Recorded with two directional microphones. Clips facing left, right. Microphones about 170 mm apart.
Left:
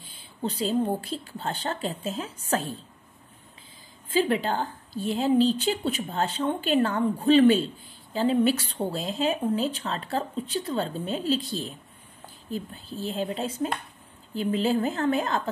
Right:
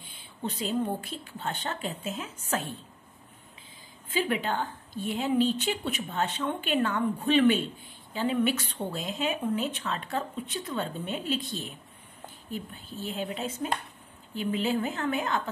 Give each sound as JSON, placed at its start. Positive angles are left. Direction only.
{"t": 0.0, "sound": "speech", "side_deg": 35}
{"t": 4.1, "sound": "speech", "side_deg": 35}